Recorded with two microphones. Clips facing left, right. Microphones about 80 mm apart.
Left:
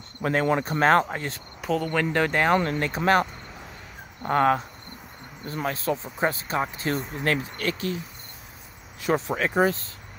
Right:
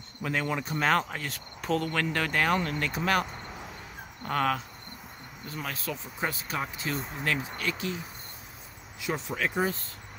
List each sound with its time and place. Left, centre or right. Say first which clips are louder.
0.2 s speech: left 7 dB; left
1.6 s speech: left 3 dB; centre
2.1 s speech: left 6 dB; left
2.5 s speech: left 5 dB; left
4.2 s speech: left 7 dB; left
9.0 s speech: left 6 dB; left